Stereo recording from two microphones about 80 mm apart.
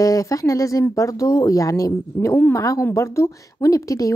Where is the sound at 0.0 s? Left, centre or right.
Left.